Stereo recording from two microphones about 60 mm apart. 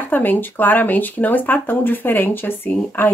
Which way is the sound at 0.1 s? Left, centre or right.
Left.